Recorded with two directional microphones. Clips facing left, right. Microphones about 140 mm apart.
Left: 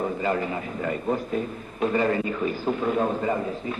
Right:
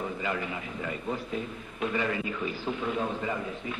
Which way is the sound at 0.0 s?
40° left (ahead or behind).